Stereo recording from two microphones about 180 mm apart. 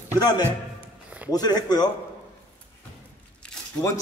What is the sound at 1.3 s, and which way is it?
Speech, 20° left (ahead or behind).